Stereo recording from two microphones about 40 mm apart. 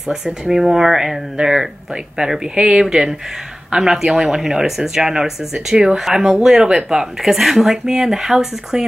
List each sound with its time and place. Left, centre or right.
0.1 s speech: centre
2.5 s speech: right
2.8 s speech: centre
7.4 s speech: centre